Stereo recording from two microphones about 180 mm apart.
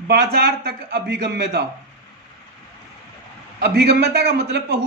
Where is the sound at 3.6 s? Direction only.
65° right (ahead or behind).